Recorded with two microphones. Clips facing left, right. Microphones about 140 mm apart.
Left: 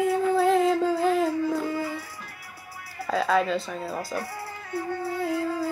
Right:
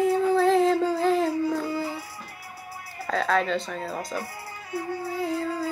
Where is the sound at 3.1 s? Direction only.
5° left (ahead or behind).